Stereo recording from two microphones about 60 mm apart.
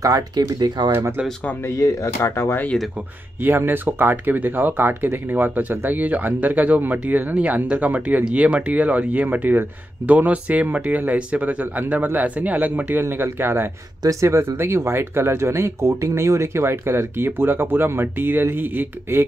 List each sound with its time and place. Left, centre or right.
0.0 s speech: right
1.7 s speech: left
3.4 s speech: right
13.2 s speech: right